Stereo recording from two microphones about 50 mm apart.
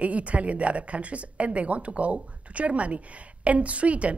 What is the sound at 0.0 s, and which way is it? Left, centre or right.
A woman's voice, right.